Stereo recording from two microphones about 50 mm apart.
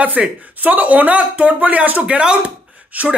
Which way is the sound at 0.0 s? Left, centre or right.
Right.